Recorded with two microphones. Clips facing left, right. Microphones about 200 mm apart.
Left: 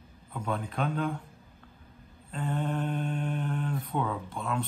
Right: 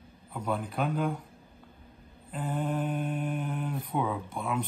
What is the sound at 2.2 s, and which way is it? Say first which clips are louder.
Mantra: even; 5° right (ahead or behind).